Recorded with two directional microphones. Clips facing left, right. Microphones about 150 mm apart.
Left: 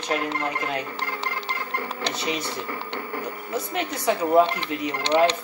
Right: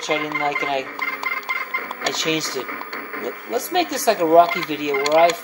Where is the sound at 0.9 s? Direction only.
20° left (ahead or behind).